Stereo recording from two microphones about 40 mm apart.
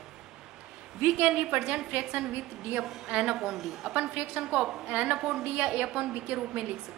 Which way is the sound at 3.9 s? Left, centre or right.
Right.